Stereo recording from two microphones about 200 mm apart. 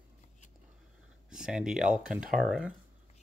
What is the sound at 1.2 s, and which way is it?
Speech, 5° right (ahead or behind).